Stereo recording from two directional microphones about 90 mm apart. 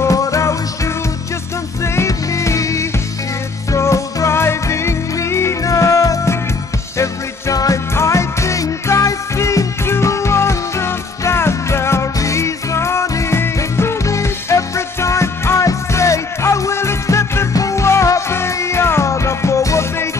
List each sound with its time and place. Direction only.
0.0 s music: 40° left (ahead or behind)
2.0 s music: 35° left (ahead or behind)